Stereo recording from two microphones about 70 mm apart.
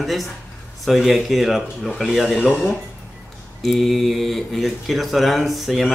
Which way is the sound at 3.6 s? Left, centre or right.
Centre.